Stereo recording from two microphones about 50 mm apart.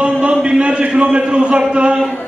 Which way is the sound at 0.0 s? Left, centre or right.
Right.